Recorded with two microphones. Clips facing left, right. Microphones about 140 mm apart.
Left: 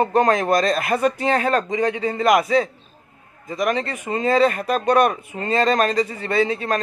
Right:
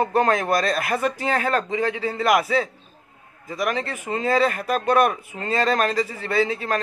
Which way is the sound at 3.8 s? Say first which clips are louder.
Left 2 dB; centre (ahead or behind).